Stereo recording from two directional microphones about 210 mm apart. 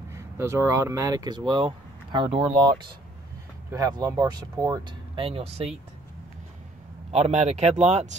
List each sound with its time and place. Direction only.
0.1 s speech: 15° right (ahead or behind); by 5.8 s 30° right (ahead or behind)
7.1 s speech: 30° right (ahead or behind)